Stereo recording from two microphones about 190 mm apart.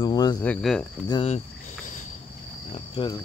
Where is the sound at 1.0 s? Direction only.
30° left (ahead or behind).